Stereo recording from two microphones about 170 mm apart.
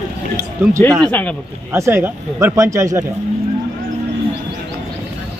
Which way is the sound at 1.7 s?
15° right (ahead or behind).